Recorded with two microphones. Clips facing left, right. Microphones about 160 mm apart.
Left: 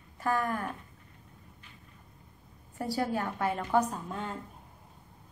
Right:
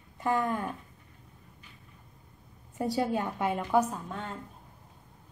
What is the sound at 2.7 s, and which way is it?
A woman's voice, 20° right (ahead or behind).